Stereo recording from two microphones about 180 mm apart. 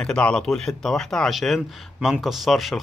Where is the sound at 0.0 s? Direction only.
5° left (ahead or behind).